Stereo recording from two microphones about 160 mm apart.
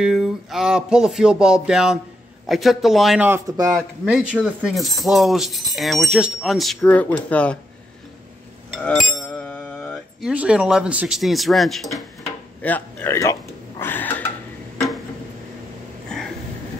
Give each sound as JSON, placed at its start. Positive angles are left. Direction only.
{"t": 0.0, "sound": "speech", "side_deg": 0}
{"t": 3.3, "sound": "speech", "side_deg": -20}
{"t": 4.0, "sound": "speech", "side_deg": -5}
{"t": 8.7, "sound": "a sound", "side_deg": 0}
{"t": 10.2, "sound": "speech", "side_deg": -5}
{"t": 12.6, "sound": "speech", "side_deg": 10}